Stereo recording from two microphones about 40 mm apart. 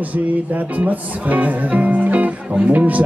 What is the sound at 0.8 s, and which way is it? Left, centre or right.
Music, right.